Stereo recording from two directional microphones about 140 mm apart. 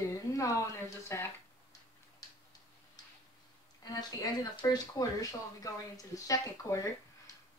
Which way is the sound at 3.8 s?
30° left (ahead or behind).